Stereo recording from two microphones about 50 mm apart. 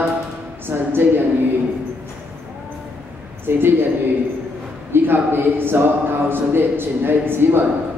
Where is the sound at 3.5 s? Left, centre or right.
Right.